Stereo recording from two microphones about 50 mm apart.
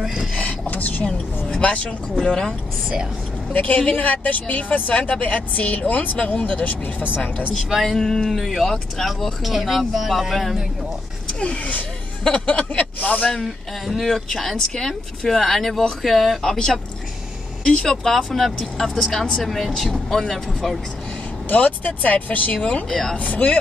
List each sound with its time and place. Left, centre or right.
0.0 s a sound: centre
0.3 s a sound: left
1.0 s a woman's voice: left
3.5 s a woman's voice: left
7.7 s speech: centre
11.3 s a woman's voice: centre
13.3 s speech: centre
21.5 s speech: left